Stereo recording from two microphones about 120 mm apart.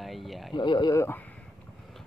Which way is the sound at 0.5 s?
40° left (ahead or behind).